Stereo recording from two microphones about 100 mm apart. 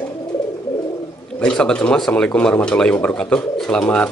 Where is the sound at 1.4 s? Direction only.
10° left (ahead or behind).